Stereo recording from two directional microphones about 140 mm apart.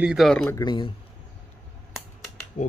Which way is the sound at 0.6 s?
35° left (ahead or behind).